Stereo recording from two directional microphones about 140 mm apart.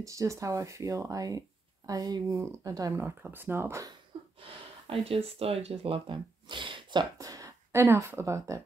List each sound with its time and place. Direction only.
0.0 s speech: 20° right (ahead or behind)
4.1 s a sound: 40° right (ahead or behind)
5.0 s speech: 45° right (ahead or behind); by 8.6 s 20° right (ahead or behind)